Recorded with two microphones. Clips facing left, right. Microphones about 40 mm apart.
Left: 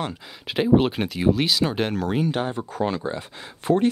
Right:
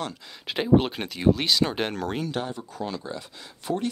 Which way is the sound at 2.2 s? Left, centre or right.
Left.